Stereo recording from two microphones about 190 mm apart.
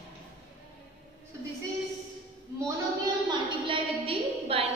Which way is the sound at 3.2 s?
25° right (ahead or behind).